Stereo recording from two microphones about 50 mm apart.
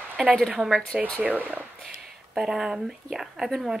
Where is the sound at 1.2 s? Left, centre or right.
Right.